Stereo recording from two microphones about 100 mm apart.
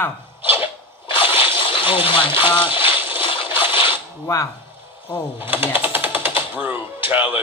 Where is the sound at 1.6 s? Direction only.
60° left (ahead or behind).